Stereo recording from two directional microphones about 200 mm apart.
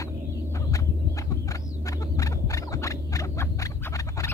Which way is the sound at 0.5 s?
15° left (ahead or behind).